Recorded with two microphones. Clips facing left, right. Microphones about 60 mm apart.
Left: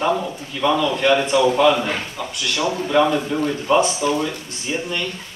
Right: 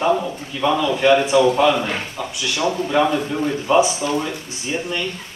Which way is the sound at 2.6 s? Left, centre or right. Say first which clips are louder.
Left 1 dB; centre.